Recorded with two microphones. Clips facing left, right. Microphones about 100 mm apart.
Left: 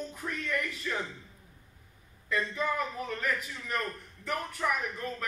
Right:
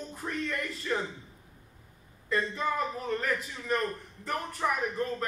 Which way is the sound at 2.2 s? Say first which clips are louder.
Right 1 dB; 30° right (ahead or behind).